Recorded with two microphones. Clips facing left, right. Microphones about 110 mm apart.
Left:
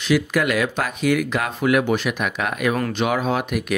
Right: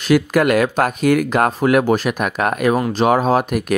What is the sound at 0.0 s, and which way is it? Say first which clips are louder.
Speech: right 5 dB; 45° right (ahead or behind).